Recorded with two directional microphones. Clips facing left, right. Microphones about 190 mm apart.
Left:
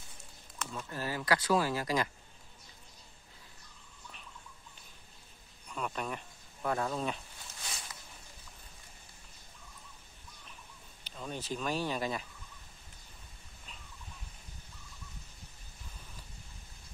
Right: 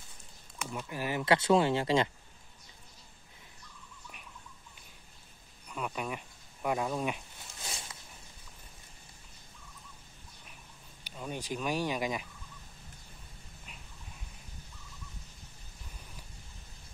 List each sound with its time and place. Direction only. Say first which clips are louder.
0.6 s speech: right 2 dB; 10° right (ahead or behind)
5.7 s speech: right 1 dB; 5° right (ahead or behind)
7.6 s a sound: right 2 dB; 25° right (ahead or behind)
11.1 s speech: right 1 dB; 10° right (ahead or behind)